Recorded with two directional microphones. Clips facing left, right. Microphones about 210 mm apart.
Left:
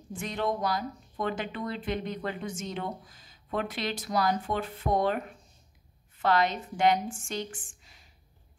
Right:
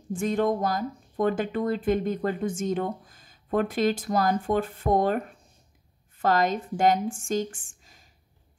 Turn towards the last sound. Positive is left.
turn(degrees=-45)  # may be behind; listen again after turning